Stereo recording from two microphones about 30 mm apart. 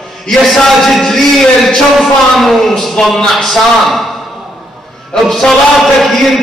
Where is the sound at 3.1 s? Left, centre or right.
Left.